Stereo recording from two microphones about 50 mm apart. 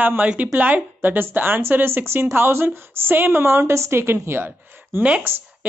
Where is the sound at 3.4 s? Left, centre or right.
Right.